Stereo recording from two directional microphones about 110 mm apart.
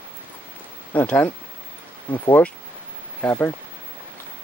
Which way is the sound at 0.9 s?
15° left (ahead or behind).